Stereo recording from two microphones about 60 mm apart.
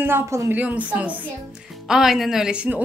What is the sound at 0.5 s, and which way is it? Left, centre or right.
Speech, right.